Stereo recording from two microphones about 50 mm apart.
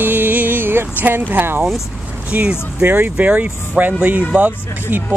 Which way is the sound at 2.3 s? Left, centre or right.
Right.